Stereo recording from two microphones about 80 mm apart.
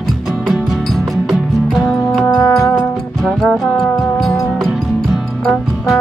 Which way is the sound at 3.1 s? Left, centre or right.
Centre.